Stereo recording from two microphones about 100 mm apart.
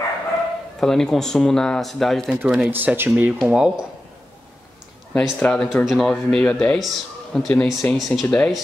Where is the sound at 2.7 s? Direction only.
20° right (ahead or behind).